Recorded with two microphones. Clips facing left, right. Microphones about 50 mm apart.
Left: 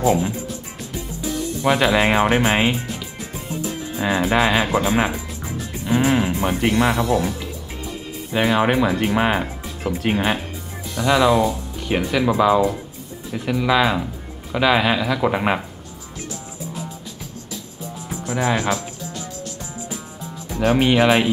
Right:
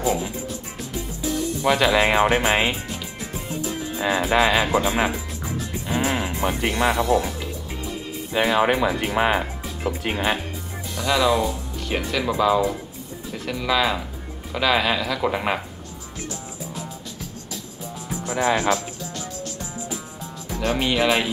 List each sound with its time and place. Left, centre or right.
0.0 s speech: centre
1.6 s speech: centre
8.3 s speech: centre
18.2 s speech: centre
20.5 s speech: centre